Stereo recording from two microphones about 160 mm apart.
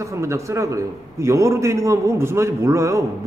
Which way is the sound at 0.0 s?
20° right (ahead or behind).